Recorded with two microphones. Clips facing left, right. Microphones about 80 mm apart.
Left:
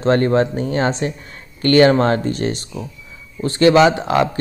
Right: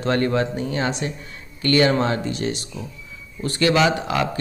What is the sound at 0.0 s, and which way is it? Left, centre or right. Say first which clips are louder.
Speech: left 6 dB; left.